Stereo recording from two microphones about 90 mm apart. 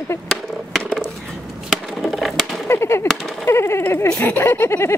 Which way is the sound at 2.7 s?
30° left (ahead or behind).